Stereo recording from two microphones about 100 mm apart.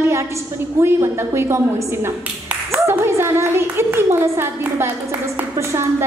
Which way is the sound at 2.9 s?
25° right (ahead or behind).